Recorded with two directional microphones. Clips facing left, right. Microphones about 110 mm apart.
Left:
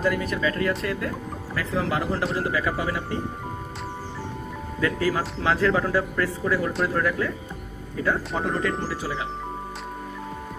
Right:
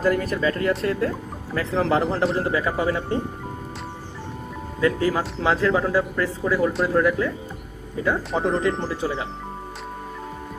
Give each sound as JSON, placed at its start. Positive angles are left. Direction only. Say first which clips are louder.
{"t": 0.0, "sound": "a man's voice", "louder": "right 3 dB", "side_deg": -40}
{"t": 4.7, "sound": "a man's voice", "louder": "right 3 dB", "side_deg": -25}
{"t": 8.4, "sound": "a man's voice", "louder": "right 4 dB", "side_deg": -20}